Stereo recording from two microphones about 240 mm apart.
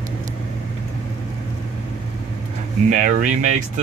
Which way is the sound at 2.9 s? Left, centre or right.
Right.